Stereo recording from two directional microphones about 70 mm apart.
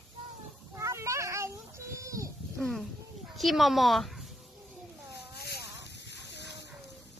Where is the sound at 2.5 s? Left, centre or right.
Centre.